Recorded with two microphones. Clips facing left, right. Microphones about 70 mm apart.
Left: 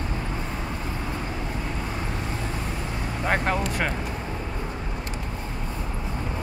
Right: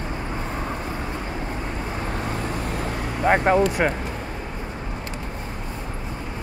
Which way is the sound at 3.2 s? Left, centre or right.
Centre.